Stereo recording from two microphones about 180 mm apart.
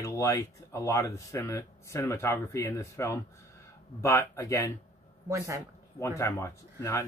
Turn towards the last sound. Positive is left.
turn(degrees=15)  # may be behind; listen again after turning